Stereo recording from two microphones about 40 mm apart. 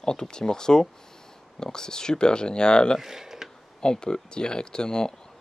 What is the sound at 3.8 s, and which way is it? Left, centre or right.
Speech, centre.